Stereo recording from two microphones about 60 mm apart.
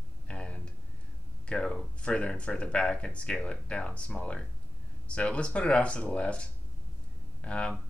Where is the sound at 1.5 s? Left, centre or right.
Centre.